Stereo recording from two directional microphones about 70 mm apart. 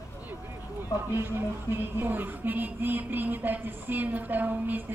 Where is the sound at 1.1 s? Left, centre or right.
Right.